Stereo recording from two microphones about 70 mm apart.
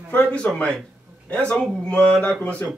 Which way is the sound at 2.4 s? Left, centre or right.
Centre.